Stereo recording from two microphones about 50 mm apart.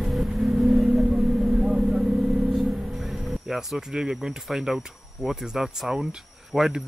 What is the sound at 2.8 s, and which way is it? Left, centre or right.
Speech, centre.